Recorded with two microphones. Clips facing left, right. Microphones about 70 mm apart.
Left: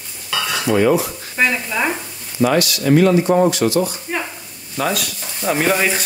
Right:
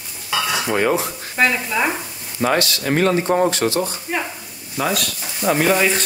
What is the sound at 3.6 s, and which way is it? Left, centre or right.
Speech, right.